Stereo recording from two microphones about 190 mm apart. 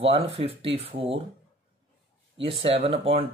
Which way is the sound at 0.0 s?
30° right (ahead or behind).